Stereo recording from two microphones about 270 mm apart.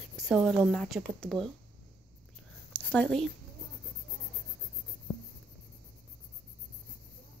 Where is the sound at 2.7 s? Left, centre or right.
Centre.